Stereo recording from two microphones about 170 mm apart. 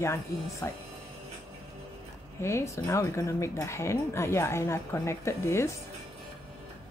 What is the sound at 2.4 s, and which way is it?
Speech, 15° left (ahead or behind).